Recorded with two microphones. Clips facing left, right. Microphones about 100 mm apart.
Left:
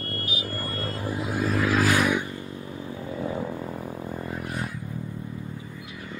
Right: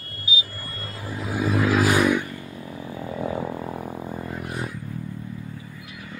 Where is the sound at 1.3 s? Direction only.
5° right (ahead or behind).